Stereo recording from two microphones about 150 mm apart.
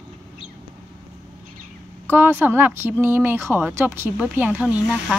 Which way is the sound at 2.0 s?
15° right (ahead or behind).